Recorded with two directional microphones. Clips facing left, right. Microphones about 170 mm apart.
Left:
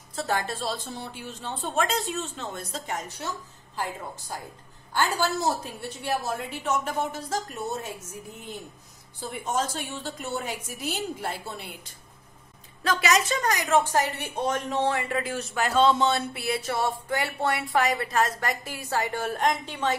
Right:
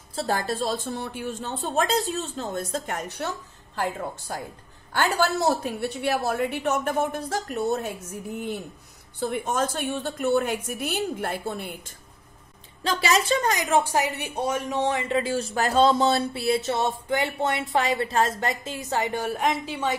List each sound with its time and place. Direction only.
0.1 s a woman's voice: 35° right (ahead or behind); by 1.5 s 55° right (ahead or behind)
1.6 s a woman's voice: 35° right (ahead or behind); by 3.3 s 60° right (ahead or behind)
4.9 s a woman's voice: 65° right (ahead or behind)
12.8 s a woman's voice: 30° right (ahead or behind); by 20.0 s 10° right (ahead or behind)